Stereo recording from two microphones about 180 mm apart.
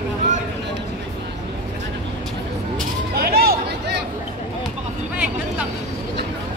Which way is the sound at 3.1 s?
60° right (ahead or behind).